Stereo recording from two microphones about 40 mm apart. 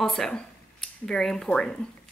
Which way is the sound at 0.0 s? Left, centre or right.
Centre.